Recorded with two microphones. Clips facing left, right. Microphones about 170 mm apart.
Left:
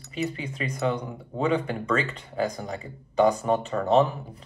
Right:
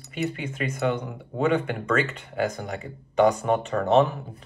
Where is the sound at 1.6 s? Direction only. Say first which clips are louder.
Right 2 dB; 35° left (ahead or behind).